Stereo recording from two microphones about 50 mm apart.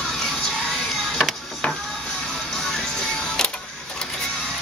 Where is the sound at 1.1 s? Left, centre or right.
Centre.